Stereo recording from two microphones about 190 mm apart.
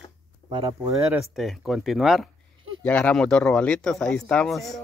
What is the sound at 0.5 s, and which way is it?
Speech, 25° right (ahead or behind).